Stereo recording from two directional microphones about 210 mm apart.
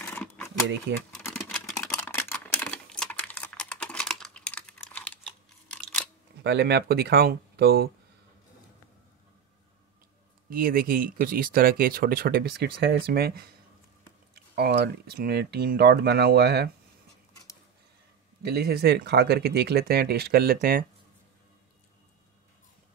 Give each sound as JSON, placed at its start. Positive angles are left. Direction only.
{"t": 0.0, "sound": "a sound", "side_deg": 5}
{"t": 6.4, "sound": "speech", "side_deg": -50}
{"t": 10.5, "sound": "speech", "side_deg": -45}
{"t": 18.4, "sound": "speech", "side_deg": -50}